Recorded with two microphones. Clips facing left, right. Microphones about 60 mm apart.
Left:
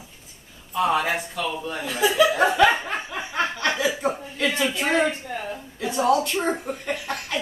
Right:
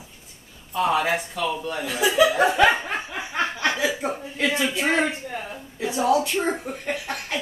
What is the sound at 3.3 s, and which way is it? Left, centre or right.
Laughter, right.